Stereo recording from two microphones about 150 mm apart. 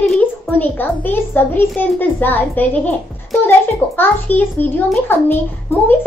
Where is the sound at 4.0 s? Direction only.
10° left (ahead or behind).